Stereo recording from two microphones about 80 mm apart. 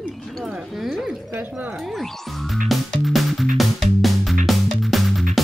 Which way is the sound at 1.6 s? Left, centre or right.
Centre.